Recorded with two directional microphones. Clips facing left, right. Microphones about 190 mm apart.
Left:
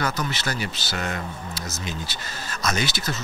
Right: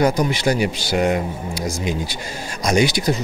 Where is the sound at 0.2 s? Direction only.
15° right (ahead or behind).